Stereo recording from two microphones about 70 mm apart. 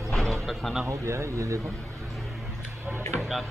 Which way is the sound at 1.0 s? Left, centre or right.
Right.